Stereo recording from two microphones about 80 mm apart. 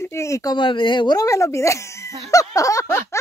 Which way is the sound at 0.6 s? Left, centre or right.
Left.